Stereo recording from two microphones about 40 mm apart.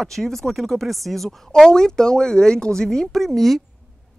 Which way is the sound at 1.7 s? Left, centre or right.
Centre.